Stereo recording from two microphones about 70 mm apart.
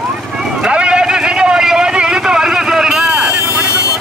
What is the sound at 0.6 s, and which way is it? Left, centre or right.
Vehicle, centre.